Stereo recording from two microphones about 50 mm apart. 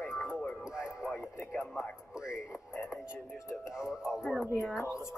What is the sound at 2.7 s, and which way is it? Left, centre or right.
Radio, left.